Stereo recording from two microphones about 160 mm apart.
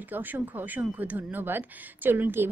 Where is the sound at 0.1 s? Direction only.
10° right (ahead or behind).